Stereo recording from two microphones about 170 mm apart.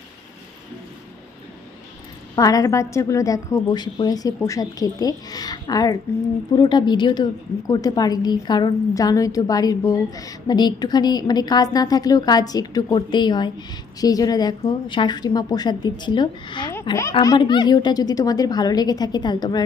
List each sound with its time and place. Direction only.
2.3 s a woman's voice: 20° left (ahead or behind)